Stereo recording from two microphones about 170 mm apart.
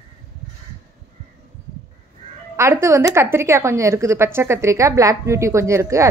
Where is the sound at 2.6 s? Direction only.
15° right (ahead or behind).